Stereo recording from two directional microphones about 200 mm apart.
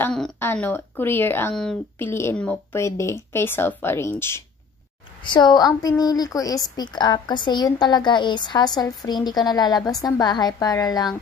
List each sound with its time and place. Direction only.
0.0 s speech: 5° left (ahead or behind)
5.2 s a woman's voice: 20° left (ahead or behind)